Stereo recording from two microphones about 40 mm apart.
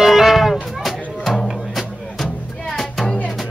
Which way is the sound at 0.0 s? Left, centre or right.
Centre.